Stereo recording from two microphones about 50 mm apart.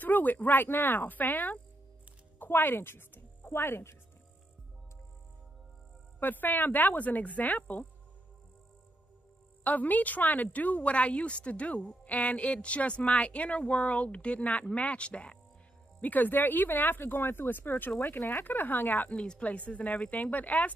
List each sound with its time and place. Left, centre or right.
0.0 s a woman's voice: left
6.1 s a woman's voice: left
9.6 s a woman's voice: left
16.0 s a woman's voice: left
19.0 s a woman's voice: left